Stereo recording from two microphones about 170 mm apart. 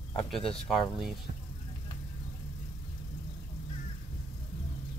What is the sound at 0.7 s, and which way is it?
Speech, centre (ahead or behind).